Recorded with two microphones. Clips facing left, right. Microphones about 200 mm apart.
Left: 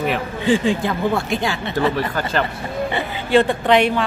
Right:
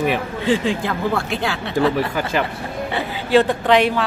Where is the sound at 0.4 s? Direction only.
Centre (ahead or behind).